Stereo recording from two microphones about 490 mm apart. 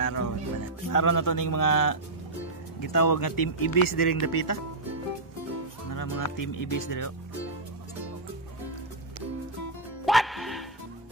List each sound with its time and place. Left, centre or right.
0.0 s music: left
0.8 s speech: left
5.9 s speech: left
10.0 s music: centre